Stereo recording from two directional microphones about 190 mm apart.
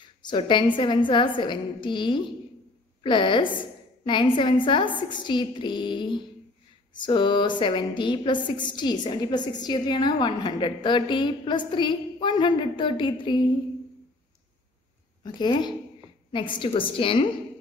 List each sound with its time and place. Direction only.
0.0 s a woman's voice: 25° left (ahead or behind)
15.2 s a woman's voice: 25° left (ahead or behind)